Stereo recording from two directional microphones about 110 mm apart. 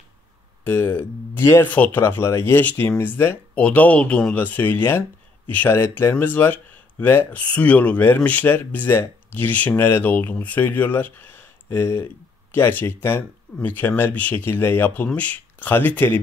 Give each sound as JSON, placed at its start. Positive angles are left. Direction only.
{"t": 0.7, "sound": "speech", "side_deg": 20}
{"t": 5.8, "sound": "speech", "side_deg": 25}
{"t": 6.1, "sound": "speech", "side_deg": 15}
{"t": 11.1, "sound": "a sound", "side_deg": 20}
{"t": 12.5, "sound": "speech", "side_deg": 20}